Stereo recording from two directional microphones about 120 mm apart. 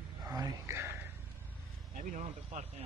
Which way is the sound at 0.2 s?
30° right (ahead or behind).